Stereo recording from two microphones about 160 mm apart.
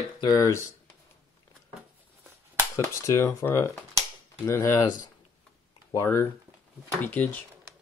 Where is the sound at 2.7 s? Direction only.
15° left (ahead or behind).